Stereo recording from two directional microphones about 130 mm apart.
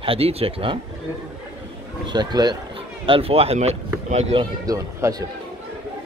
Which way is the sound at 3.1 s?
45° right (ahead or behind).